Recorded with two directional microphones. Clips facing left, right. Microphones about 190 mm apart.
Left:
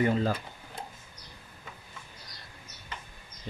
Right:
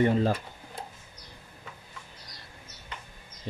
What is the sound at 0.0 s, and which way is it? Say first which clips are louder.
Speech: right 3 dB; 30° right (ahead or behind).